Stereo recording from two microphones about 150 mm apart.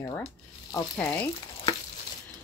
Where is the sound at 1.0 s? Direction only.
10° left (ahead or behind).